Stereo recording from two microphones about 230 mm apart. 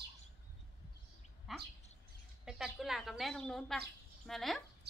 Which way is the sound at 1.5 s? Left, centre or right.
Centre.